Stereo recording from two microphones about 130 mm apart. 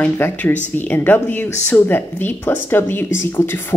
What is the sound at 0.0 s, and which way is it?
Speech, 10° left (ahead or behind).